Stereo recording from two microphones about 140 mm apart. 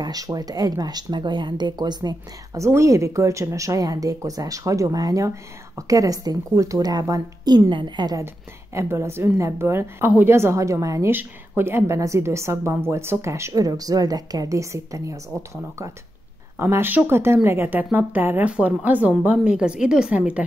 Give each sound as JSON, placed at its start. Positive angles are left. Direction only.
{"t": 0.0, "sound": "speech", "side_deg": -25}
{"t": 8.7, "sound": "a woman's voice", "side_deg": -20}